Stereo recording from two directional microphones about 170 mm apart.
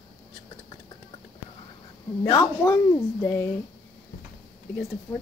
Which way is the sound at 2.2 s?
20° left (ahead or behind).